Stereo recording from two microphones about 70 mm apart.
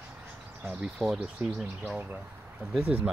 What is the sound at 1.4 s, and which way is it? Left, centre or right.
Speech, right.